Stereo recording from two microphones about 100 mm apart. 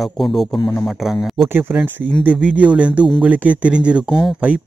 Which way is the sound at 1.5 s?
20° right (ahead or behind).